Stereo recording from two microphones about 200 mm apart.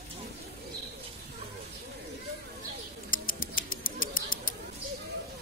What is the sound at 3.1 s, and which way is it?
Bird, 45° left (ahead or behind).